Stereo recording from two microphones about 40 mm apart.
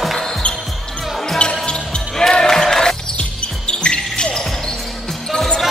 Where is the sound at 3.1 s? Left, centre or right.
Left.